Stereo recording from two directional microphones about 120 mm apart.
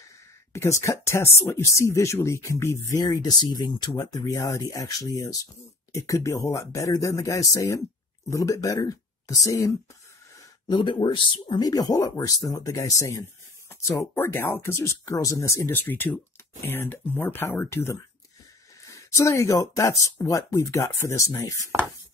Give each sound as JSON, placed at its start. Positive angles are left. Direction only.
{"t": 0.5, "sound": "speech", "side_deg": 25}
{"t": 10.7, "sound": "speech", "side_deg": 40}